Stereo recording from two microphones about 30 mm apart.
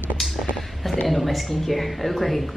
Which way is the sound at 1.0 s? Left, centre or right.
Centre.